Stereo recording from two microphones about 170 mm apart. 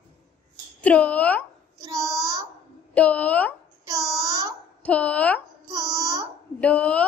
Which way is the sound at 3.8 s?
20° right (ahead or behind).